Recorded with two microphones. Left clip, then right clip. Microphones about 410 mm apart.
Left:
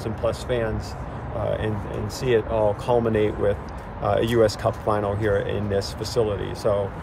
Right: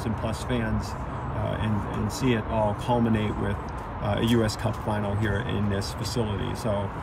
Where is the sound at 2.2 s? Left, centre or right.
Centre.